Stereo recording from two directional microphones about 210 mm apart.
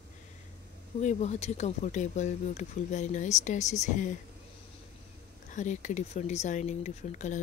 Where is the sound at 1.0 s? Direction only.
35° left (ahead or behind).